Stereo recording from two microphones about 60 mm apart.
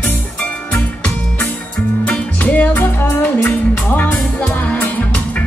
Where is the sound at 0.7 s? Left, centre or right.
Left.